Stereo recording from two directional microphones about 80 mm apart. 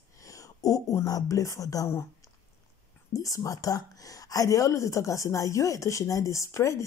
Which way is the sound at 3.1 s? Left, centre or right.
Left.